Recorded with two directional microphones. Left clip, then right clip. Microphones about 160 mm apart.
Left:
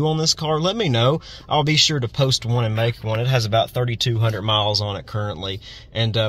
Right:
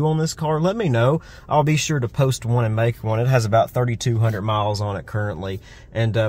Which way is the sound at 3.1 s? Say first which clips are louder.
Right 1 dB; 35° right (ahead or behind).